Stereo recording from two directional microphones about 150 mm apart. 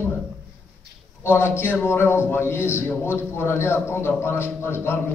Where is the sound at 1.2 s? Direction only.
15° left (ahead or behind).